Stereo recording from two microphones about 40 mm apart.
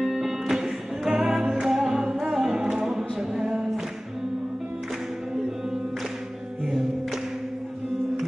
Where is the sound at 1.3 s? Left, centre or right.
Right.